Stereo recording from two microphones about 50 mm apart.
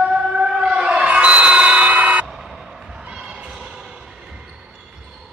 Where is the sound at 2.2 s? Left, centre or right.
Centre.